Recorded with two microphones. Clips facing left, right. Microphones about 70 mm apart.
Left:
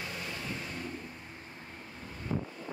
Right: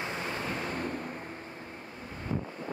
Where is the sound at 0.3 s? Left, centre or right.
Right.